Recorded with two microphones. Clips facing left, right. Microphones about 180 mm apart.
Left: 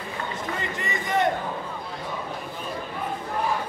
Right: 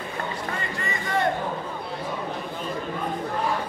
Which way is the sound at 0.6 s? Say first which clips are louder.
Even; 20° left (ahead or behind).